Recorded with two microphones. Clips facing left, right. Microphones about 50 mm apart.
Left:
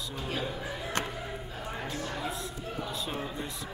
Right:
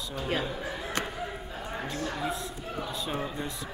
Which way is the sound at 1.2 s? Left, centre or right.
Centre.